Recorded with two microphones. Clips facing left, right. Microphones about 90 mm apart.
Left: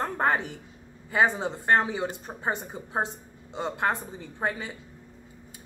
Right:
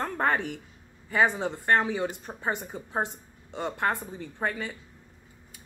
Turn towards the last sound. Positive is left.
turn(degrees=20)  # may be behind; listen again after turning